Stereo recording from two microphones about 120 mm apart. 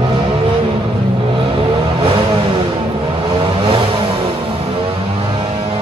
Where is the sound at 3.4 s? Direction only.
45° right (ahead or behind).